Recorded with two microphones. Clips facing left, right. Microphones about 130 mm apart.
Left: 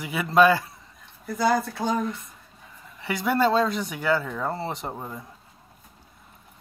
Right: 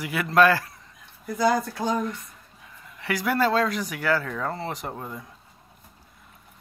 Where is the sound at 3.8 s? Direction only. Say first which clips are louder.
Left 1 dB; 25° left (ahead or behind).